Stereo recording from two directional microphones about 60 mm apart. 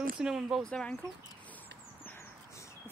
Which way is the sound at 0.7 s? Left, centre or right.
Centre.